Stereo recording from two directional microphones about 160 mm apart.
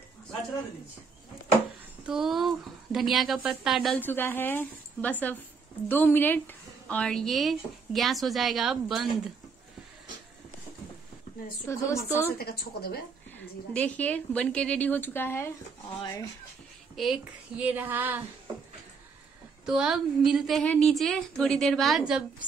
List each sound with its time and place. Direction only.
2.0 s a woman's voice: 5° right (ahead or behind)
4.0 s a woman's voice: 15° left (ahead or behind)
11.6 s a woman's voice: 20° left (ahead or behind)
12.4 s speech: 75° left (ahead or behind)
13.4 s a woman's voice: 10° left (ahead or behind)
16.9 s speech: centre (ahead or behind)
19.6 s a woman's voice: 5° right (ahead or behind)